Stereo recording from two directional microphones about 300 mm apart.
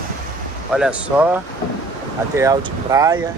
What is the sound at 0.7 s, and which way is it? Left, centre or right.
Speech, centre.